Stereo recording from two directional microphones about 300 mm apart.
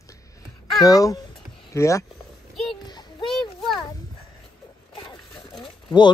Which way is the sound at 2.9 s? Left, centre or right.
Centre.